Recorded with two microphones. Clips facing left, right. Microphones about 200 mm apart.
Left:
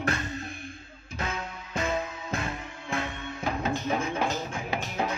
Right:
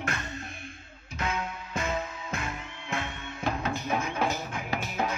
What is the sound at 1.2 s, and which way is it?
Music, 35° left (ahead or behind).